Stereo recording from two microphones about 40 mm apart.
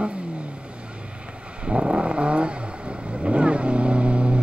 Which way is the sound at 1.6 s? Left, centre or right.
Right.